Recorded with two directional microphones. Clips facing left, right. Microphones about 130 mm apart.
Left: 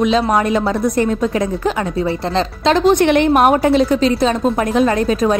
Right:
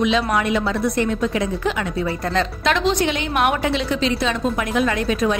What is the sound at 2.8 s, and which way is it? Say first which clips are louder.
A woman's voice: left 9 dB; 55° left (ahead or behind).